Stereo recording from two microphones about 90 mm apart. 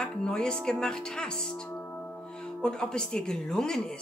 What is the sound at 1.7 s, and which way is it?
Music, 20° left (ahead or behind).